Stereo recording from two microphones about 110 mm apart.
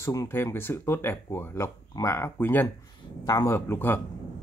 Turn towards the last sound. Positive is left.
turn(degrees=20)  # may be behind; listen again after turning